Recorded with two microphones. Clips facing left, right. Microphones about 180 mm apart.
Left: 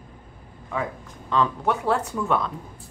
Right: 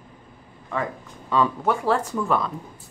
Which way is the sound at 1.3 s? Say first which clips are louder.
Right 1 dB; 5° right (ahead or behind).